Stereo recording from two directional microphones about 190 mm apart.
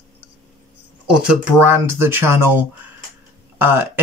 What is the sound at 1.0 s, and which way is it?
Speech, 10° right (ahead or behind).